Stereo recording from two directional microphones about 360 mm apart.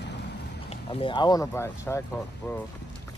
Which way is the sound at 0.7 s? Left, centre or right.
Centre.